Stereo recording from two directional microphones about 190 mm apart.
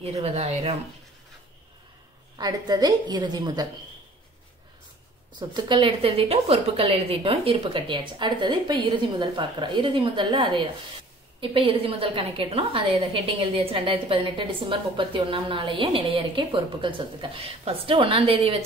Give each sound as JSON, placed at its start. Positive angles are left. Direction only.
{"t": 0.0, "sound": "speech", "side_deg": -35}
{"t": 2.3, "sound": "a woman's voice", "side_deg": -20}
{"t": 5.4, "sound": "a woman's voice", "side_deg": -25}